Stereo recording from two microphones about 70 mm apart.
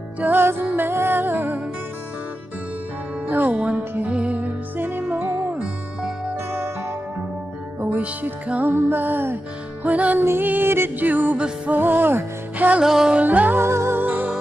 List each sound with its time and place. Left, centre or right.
0.2 s music: right
3.3 s music: right
4.7 s music: right
11.3 s music: centre
11.7 s music: right
12.8 s music: centre
13.2 s music: right
13.6 s music: right
13.9 s music: right